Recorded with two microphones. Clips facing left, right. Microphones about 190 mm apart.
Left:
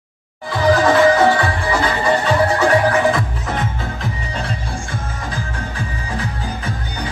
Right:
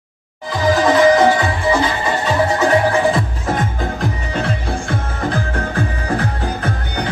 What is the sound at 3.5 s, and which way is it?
Music, 55° right (ahead or behind).